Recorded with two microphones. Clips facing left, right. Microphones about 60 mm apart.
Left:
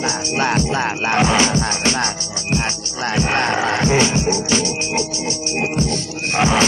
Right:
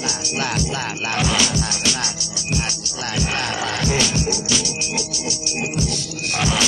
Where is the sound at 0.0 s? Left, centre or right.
Left.